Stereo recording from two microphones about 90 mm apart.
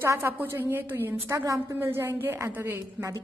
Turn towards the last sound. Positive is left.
turn(degrees=-35)  # may be behind; listen again after turning